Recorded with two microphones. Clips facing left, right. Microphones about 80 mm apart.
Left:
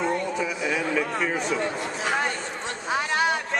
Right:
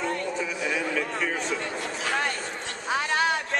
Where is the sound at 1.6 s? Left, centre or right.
Left.